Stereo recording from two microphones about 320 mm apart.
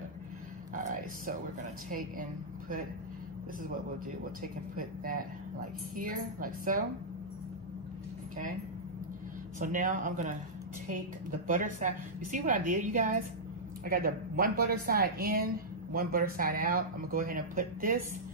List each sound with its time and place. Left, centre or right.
0.7 s speech: right
4.2 s speech: right
9.6 s speech: right